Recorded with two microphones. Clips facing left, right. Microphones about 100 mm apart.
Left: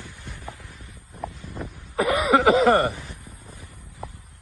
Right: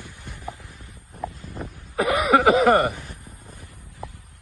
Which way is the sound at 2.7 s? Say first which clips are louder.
Right 1 dB; 20° right (ahead or behind).